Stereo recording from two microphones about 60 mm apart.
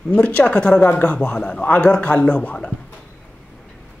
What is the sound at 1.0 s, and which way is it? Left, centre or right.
Speech, centre.